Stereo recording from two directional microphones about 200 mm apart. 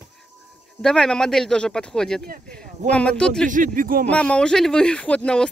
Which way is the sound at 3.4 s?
40° right (ahead or behind).